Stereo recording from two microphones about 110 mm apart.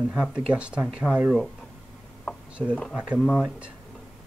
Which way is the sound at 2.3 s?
5° left (ahead or behind).